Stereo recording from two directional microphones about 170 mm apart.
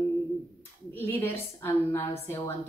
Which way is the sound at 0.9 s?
10° left (ahead or behind).